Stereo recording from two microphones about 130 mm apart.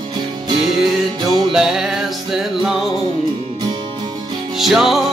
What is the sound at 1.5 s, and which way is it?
Music, 5° right (ahead or behind).